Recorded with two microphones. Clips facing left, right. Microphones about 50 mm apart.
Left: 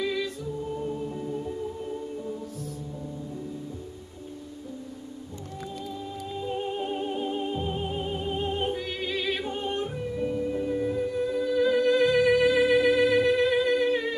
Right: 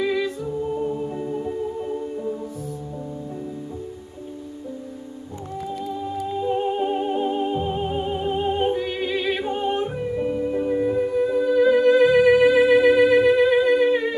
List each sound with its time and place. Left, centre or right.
0.0 s music: centre
5.8 s music: centre